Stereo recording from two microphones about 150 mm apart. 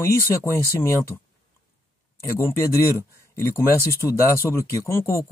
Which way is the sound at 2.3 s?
20° left (ahead or behind).